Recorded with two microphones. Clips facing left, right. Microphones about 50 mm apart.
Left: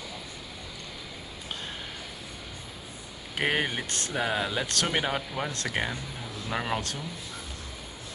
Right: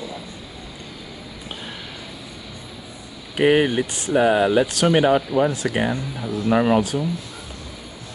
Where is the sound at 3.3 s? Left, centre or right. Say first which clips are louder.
Right 11 dB; right.